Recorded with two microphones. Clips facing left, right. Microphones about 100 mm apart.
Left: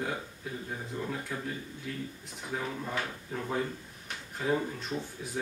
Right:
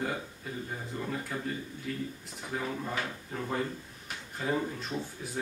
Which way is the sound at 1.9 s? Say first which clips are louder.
Right 3 dB; centre (ahead or behind).